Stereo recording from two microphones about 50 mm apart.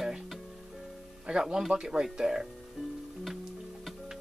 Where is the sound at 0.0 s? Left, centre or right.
Centre.